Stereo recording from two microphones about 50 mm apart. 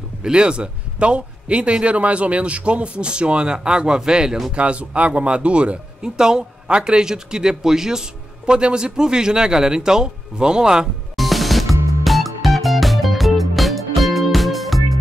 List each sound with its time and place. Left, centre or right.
0.2 s a man's voice: centre
11.1 s music: centre